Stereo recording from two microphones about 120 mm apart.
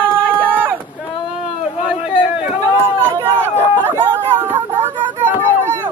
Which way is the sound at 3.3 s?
20° right (ahead or behind).